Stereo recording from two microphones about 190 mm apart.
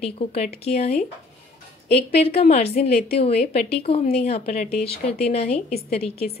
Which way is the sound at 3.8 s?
30° left (ahead or behind).